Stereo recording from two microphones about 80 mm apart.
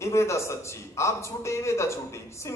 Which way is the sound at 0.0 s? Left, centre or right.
Left.